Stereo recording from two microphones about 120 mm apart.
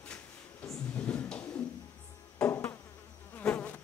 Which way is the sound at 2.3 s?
20° left (ahead or behind).